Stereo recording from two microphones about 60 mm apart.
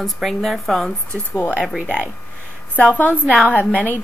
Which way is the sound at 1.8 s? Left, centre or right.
Right.